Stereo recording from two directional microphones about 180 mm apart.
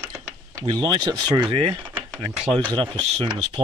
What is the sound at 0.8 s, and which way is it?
Speech, 20° right (ahead or behind).